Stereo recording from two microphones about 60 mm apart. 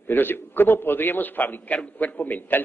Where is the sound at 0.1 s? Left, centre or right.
Left.